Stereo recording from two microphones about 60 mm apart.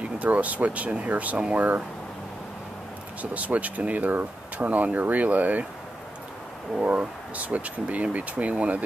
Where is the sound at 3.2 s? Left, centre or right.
Right.